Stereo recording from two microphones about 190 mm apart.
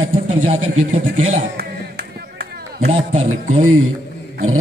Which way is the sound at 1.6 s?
55° right (ahead or behind).